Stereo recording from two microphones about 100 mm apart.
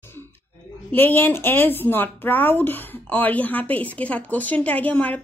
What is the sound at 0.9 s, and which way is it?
A woman's voice, 20° left (ahead or behind).